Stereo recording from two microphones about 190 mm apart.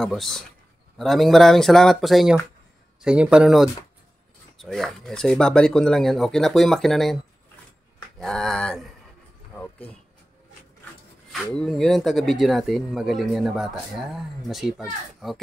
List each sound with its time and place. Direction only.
0.0 s speech: centre (ahead or behind)
8.2 s speech: centre (ahead or behind)
9.5 s a sound: 10° left (ahead or behind)
11.4 s speech: 5° left (ahead or behind)